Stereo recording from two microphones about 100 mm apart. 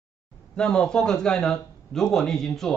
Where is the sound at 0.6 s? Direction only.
10° left (ahead or behind).